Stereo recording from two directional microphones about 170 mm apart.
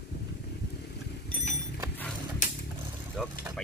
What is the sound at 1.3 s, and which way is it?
Mechanisms, 55° left (ahead or behind).